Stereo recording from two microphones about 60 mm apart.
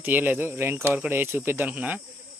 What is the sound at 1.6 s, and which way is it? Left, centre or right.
Speech, right.